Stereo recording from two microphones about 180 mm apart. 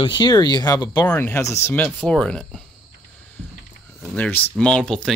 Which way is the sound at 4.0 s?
10° left (ahead or behind).